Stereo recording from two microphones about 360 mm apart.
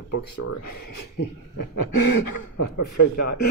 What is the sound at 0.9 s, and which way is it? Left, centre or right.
Speech, left.